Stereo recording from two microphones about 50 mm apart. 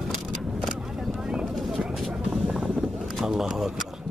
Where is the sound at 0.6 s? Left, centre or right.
Centre.